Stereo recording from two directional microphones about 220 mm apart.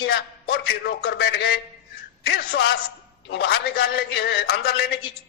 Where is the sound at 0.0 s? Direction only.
45° left (ahead or behind).